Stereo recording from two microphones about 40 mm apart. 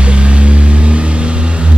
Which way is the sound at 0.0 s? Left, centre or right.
Right.